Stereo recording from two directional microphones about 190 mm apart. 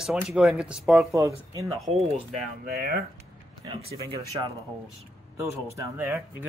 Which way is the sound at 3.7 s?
30° right (ahead or behind).